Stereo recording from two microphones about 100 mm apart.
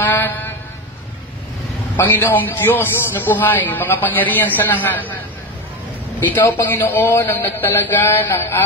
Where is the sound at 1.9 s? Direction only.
20° left (ahead or behind).